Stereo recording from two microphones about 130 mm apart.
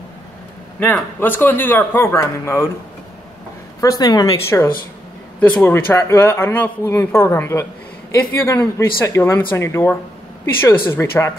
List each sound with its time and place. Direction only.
1.2 s a man's voice: 15° left (ahead or behind)
3.8 s speech: 30° left (ahead or behind)
5.4 s speech: 10° left (ahead or behind)